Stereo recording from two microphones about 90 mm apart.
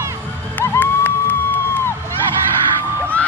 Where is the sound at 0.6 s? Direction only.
20° left (ahead or behind).